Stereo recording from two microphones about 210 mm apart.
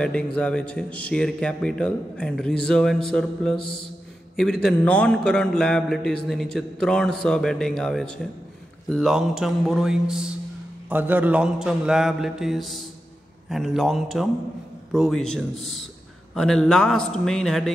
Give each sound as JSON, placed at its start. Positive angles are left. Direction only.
{"t": 0.4, "sound": "a man's voice", "side_deg": 5}